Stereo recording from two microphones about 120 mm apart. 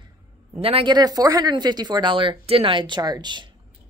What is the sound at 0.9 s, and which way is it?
A woman's voice, 35° right (ahead or behind).